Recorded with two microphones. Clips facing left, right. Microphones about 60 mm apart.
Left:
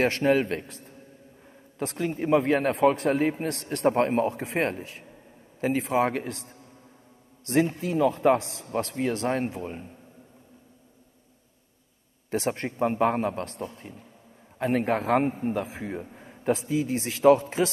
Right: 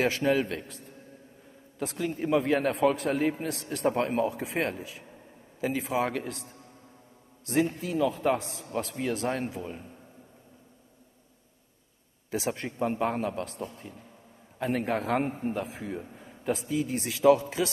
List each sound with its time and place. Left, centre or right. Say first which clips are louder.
0.0 s a man's voice: left 3 dB; left
6.0 s a man's voice: left 3 dB; left
12.3 s a man's voice: left 3 dB; left
16.2 s a sound: left 5 dB; left
16.6 s a man's voice: left 3 dB; left